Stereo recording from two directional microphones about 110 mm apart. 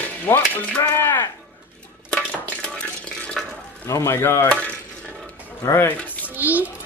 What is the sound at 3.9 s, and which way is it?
Speech, 25° left (ahead or behind).